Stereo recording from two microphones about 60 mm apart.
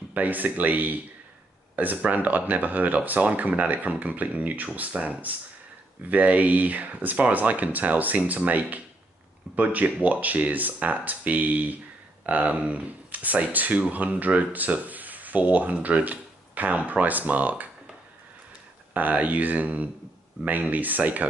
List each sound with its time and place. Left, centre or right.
0.1 s speech: right
18.9 s speech: right